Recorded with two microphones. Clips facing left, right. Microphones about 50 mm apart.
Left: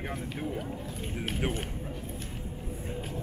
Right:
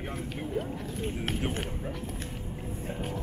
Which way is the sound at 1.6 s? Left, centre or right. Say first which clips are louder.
Right 3 dB; centre.